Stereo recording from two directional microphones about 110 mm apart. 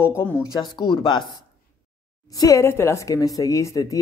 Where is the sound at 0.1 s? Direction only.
20° left (ahead or behind).